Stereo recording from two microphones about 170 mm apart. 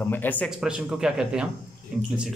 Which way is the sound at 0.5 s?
5° right (ahead or behind).